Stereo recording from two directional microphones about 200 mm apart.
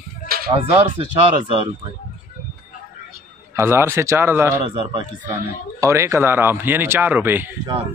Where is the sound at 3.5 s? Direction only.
10° right (ahead or behind).